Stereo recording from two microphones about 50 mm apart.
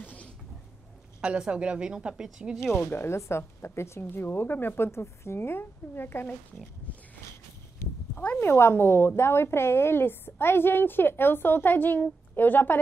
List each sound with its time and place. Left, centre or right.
0.0 s a sound: left
1.2 s a woman's voice: right
2.7 s a woman's voice: left
4.0 s a woman's voice: left
8.4 s a woman's voice: left